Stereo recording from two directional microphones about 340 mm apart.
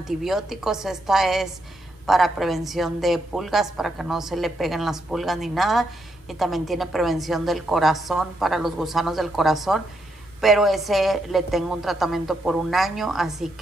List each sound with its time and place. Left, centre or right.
0.2 s a woman's voice: centre